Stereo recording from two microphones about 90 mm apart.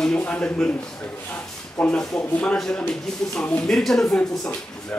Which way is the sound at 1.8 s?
15° left (ahead or behind).